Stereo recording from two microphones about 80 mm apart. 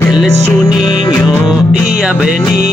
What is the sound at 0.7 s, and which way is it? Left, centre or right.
Music, left.